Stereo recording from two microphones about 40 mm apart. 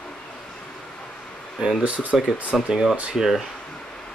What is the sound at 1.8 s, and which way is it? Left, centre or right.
Speech, right.